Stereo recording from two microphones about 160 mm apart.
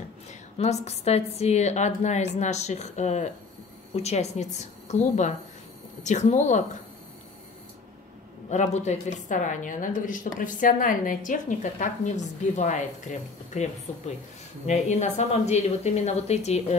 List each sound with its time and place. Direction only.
0.3 s a woman's voice: 45° left (ahead or behind)
8.5 s a woman's voice: 45° left (ahead or behind)